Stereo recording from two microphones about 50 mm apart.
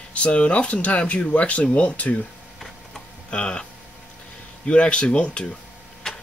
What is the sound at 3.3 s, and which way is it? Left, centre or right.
Speech, centre.